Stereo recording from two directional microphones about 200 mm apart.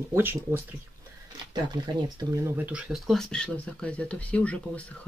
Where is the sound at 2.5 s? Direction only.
5° right (ahead or behind).